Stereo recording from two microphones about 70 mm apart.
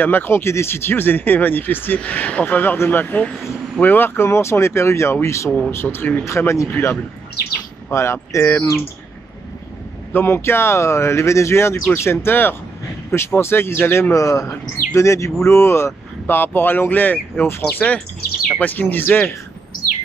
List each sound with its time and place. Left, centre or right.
0.0 s speech: left
10.1 s speech: left
14.1 s speech: left